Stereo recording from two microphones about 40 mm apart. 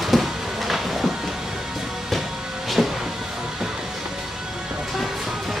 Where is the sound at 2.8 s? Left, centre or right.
Centre.